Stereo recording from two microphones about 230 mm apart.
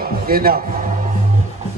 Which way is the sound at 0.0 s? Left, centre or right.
Right.